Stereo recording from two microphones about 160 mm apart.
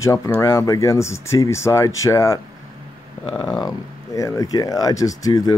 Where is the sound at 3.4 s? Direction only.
20° left (ahead or behind).